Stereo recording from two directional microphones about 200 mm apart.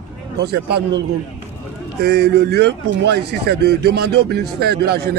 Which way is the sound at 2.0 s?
55° right (ahead or behind).